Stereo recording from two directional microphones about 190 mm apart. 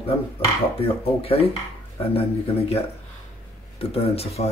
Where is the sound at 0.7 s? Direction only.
30° left (ahead or behind).